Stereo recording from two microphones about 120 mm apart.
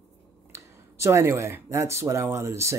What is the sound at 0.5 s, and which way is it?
Speech, 25° right (ahead or behind).